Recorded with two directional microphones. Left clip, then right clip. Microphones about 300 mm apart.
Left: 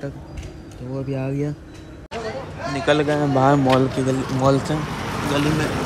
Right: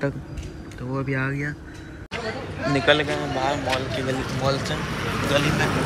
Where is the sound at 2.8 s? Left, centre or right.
Centre.